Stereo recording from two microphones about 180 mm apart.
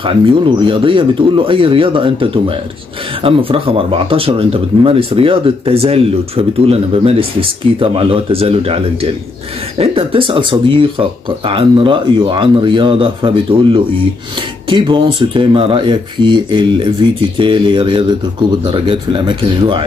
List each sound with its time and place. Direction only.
0.0 s speech: 30° right (ahead or behind)